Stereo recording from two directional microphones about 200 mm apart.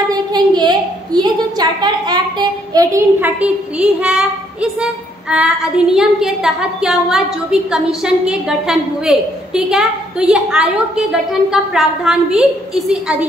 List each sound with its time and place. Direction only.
0.1 s a woman's voice: 20° right (ahead or behind); by 13.2 s 5° right (ahead or behind)